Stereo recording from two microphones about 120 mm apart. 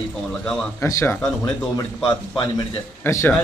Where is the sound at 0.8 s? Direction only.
25° left (ahead or behind).